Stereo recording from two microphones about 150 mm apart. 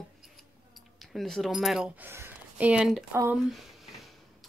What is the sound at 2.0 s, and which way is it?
Speech, 15° right (ahead or behind).